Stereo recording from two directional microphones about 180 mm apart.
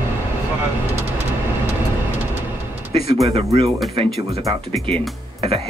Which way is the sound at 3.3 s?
35° right (ahead or behind).